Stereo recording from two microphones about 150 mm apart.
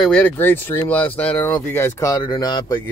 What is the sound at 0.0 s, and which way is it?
Speech, 10° left (ahead or behind).